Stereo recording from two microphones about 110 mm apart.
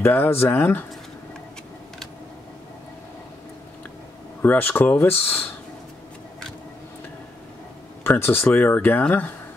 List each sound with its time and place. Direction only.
0.0 s speech: 20° left (ahead or behind)
4.4 s speech: 15° left (ahead or behind)
8.0 s speech: 20° left (ahead or behind)